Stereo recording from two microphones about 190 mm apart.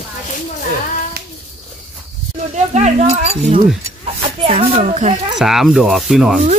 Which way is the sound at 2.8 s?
35° right (ahead or behind).